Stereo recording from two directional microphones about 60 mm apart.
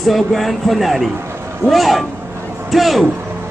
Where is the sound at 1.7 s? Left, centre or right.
Centre.